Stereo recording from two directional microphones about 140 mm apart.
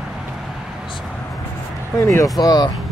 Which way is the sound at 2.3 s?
30° left (ahead or behind).